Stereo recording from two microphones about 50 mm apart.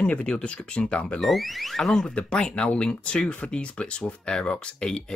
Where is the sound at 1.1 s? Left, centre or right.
Centre.